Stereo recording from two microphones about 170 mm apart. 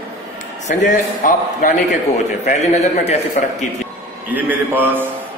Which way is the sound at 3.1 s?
40° left (ahead or behind).